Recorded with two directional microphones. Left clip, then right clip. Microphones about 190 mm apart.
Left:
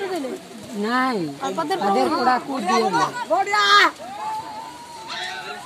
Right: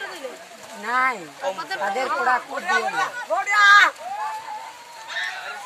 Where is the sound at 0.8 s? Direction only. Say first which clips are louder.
Right 1 dB; 45° left (ahead or behind).